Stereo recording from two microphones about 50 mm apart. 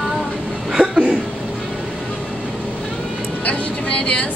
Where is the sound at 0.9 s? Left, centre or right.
Right.